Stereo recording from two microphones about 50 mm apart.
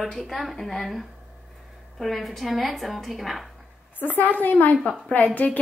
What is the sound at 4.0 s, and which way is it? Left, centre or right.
A woman's voice, left.